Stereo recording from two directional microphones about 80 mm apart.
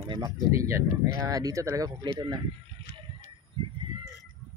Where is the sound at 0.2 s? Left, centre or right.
Right.